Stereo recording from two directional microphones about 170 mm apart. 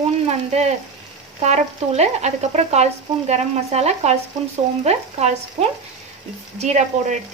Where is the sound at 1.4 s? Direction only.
40° right (ahead or behind).